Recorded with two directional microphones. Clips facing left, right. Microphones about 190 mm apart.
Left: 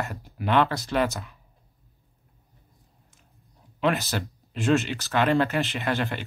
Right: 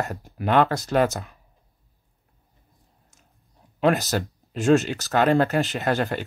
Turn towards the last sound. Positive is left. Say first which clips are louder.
# right 4 dB
turn(degrees=-40)  # may be behind; listen again after turning